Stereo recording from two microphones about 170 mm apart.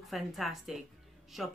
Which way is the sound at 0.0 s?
Centre (ahead or behind).